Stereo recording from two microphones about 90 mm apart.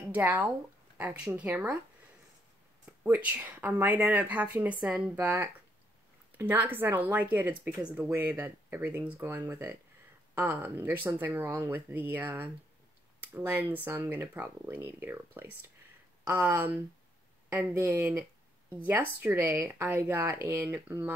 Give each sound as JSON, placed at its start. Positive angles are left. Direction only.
{"t": 0.1, "sound": "speech", "side_deg": -20}
{"t": 3.0, "sound": "speech", "side_deg": -15}
{"t": 13.5, "sound": "speech", "side_deg": -20}